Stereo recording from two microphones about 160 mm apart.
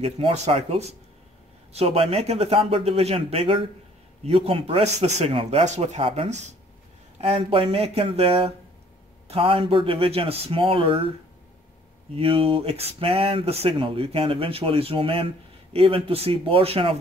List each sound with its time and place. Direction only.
0.0 s speech: 40° right (ahead or behind)
12.1 s speech: 35° right (ahead or behind)